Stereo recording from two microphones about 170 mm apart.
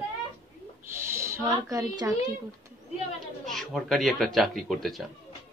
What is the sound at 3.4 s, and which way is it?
Speech, centre (ahead or behind).